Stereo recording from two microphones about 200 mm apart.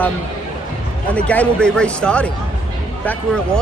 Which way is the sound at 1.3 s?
5° left (ahead or behind).